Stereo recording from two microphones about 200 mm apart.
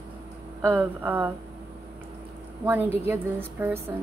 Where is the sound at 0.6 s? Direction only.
10° right (ahead or behind).